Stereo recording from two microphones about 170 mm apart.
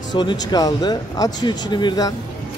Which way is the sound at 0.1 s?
25° left (ahead or behind).